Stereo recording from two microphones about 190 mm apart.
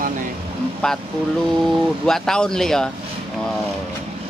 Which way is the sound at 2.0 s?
Centre (ahead or behind).